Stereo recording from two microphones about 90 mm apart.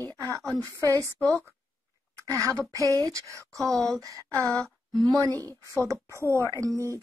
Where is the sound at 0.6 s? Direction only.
40° right (ahead or behind).